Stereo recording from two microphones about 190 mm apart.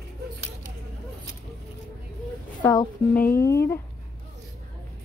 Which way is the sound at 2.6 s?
10° left (ahead or behind).